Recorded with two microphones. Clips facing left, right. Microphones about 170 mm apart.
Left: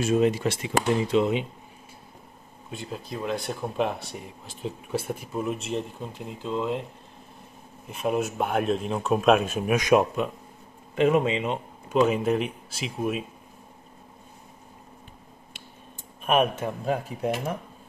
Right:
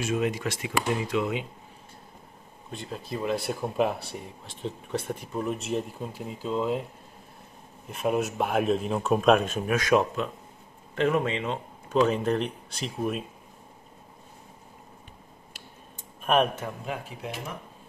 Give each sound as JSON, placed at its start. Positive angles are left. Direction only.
{"t": 0.0, "sound": "speech", "side_deg": 30}
{"t": 2.7, "sound": "speech", "side_deg": 0}
{"t": 7.9, "sound": "speech", "side_deg": 0}
{"t": 16.3, "sound": "speech", "side_deg": 0}
{"t": 16.8, "sound": "speech", "side_deg": 40}